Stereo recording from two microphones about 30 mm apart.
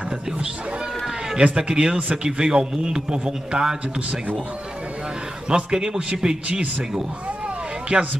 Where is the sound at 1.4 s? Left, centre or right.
Right.